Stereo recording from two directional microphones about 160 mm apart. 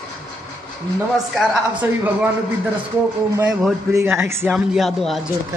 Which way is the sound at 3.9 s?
15° right (ahead or behind).